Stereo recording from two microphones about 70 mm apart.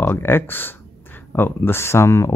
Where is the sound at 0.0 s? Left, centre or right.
Left.